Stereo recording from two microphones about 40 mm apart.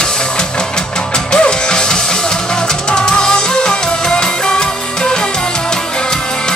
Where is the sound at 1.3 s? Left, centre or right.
Centre.